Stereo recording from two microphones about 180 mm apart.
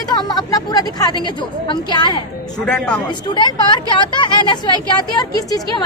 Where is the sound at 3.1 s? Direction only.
25° left (ahead or behind).